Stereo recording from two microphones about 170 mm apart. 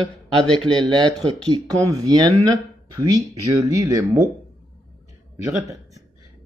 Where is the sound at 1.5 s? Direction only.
20° right (ahead or behind).